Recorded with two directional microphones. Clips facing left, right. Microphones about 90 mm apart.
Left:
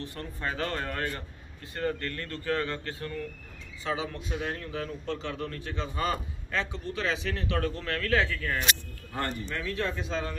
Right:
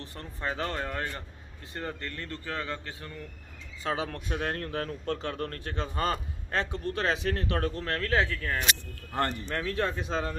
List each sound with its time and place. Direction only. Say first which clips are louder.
0.0 s speech: left 1 dB; 25° right (ahead or behind)
3.8 s a man's voice: right 1 dB; 50° right (ahead or behind); by 8.5 s 30° right (ahead or behind)
9.1 s a man's voice: right 3 dB; 55° right (ahead or behind)
9.6 s a man's voice: right 3 dB; 40° right (ahead or behind)